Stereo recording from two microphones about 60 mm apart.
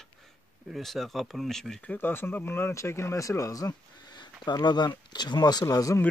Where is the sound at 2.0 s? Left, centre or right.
Left.